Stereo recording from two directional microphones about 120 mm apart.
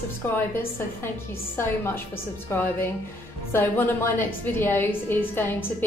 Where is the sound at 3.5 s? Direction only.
20° left (ahead or behind).